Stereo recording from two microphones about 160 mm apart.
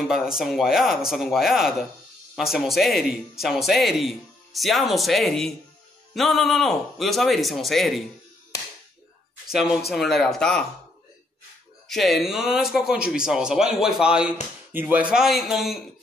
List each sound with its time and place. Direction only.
0.1 s speech: 5° right (ahead or behind)
9.5 s speech: 5° right (ahead or behind)
11.9 s speech: centre (ahead or behind)